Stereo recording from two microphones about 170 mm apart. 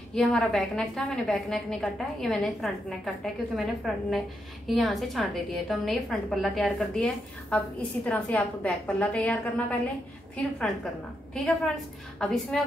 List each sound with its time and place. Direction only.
0.1 s a woman's voice: 5° left (ahead or behind)
11.3 s a woman's voice: 5° left (ahead or behind)